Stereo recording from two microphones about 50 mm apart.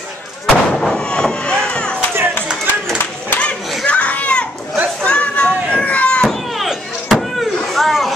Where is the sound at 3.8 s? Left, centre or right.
Left.